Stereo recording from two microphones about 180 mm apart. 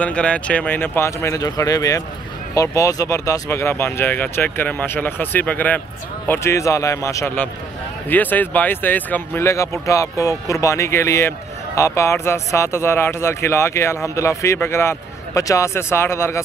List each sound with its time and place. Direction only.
0.0 s speech: 5° left (ahead or behind)